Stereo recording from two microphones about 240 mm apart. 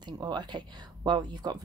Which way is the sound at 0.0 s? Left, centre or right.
Centre.